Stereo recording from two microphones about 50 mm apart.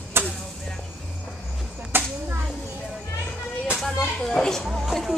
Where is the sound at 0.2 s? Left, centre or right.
Right.